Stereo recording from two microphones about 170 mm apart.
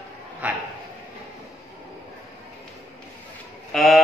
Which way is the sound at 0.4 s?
10° right (ahead or behind).